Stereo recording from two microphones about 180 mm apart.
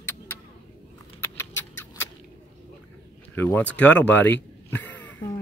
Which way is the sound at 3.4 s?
10° left (ahead or behind).